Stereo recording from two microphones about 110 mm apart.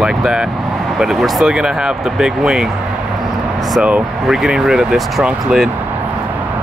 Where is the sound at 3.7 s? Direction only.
10° right (ahead or behind).